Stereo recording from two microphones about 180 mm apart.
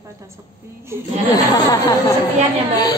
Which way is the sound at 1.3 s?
20° left (ahead or behind).